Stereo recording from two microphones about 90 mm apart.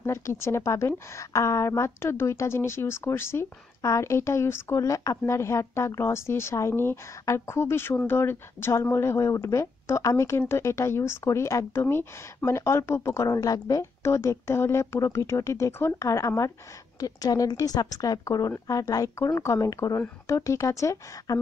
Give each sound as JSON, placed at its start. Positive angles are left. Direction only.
{"t": 0.0, "sound": "a woman's voice", "side_deg": 30}